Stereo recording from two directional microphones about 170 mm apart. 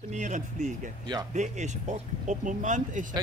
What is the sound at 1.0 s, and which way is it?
Speech, 25° right (ahead or behind).